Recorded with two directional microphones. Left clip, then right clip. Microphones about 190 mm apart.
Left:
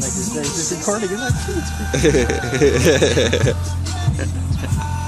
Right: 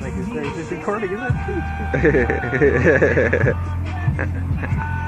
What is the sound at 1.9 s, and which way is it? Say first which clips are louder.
Speech: left 1 dB; 25° left (ahead or behind).